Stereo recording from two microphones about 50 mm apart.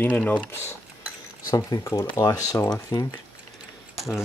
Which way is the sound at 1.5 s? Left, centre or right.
Left.